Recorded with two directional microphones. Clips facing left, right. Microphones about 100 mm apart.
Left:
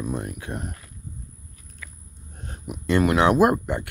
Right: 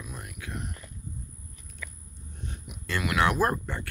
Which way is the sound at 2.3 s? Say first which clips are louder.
Left 6 dB; 45° left (ahead or behind).